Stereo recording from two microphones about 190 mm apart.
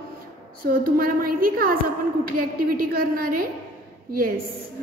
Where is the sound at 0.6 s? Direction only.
50° right (ahead or behind).